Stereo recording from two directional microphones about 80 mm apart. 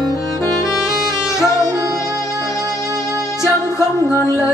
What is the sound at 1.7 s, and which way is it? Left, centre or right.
Music, right.